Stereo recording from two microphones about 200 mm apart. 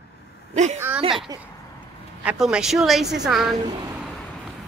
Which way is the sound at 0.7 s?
10° right (ahead or behind).